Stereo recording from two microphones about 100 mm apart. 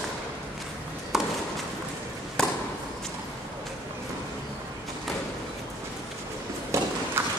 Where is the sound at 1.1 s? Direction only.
5° right (ahead or behind).